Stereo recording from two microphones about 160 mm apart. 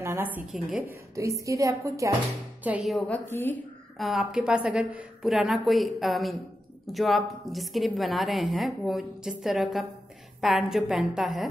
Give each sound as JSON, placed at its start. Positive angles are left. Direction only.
{"t": 0.0, "sound": "a woman's voice", "side_deg": -15}
{"t": 1.1, "sound": "a woman's voice", "side_deg": -20}
{"t": 2.6, "sound": "a woman's voice", "side_deg": -5}
{"t": 3.3, "sound": "a woman's voice", "side_deg": 15}
{"t": 4.0, "sound": "a woman's voice", "side_deg": 0}